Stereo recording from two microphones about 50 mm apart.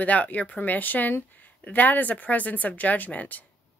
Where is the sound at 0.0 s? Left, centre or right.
Left.